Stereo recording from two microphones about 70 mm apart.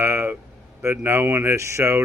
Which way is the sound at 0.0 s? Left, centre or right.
Right.